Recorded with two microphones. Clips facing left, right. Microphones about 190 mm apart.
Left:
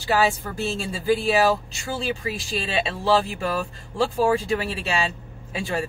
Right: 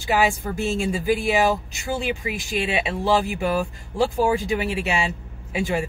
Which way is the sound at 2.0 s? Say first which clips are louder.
Right 1 dB; 35° left (ahead or behind).